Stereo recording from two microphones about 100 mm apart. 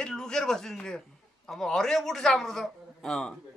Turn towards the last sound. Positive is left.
turn(degrees=5)  # may be behind; listen again after turning